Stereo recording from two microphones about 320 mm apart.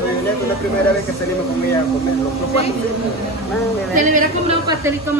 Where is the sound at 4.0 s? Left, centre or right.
Right.